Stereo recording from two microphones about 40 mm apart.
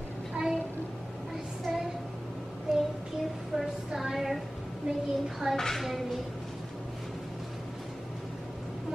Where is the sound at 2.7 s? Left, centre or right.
Centre.